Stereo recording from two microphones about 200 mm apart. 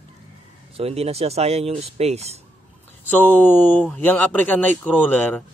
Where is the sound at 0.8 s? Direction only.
30° right (ahead or behind).